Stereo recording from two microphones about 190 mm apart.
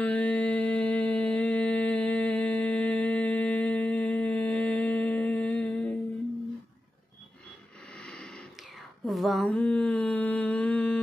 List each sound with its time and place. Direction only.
0.0 s music: 10° left (ahead or behind)
7.9 s a sound: 5° left (ahead or behind)
9.0 s mantra: centre (ahead or behind)